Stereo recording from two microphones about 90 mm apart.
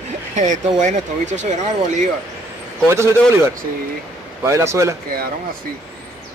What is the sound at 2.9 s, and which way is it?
Speech, 30° right (ahead or behind).